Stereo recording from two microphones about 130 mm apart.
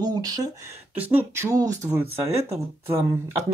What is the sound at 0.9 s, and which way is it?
Speech, 15° right (ahead or behind).